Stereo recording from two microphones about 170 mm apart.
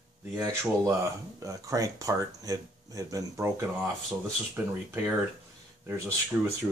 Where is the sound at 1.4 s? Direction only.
20° right (ahead or behind).